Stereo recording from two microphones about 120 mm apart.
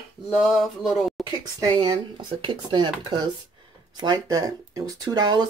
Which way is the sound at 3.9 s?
35° right (ahead or behind).